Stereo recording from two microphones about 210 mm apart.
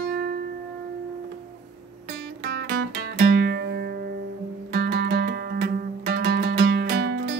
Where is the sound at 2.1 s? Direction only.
50° right (ahead or behind).